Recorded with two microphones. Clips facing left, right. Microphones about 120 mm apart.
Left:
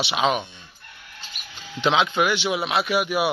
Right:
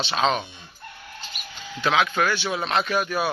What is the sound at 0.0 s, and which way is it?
Speech, 10° left (ahead or behind).